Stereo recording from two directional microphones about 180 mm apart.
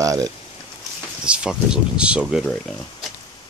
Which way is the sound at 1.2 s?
5° right (ahead or behind).